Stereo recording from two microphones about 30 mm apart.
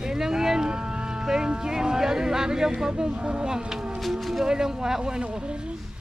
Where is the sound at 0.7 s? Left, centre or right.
Right.